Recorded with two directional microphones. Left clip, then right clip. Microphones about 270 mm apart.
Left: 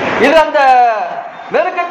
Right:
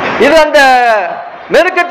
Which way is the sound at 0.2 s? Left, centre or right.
Right.